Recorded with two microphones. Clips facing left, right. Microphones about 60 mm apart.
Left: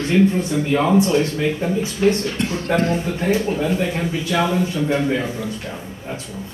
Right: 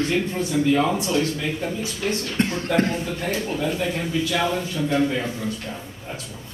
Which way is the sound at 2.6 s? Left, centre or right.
Left.